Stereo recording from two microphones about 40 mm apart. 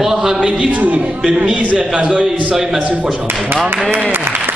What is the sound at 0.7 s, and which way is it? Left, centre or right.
Speech, right.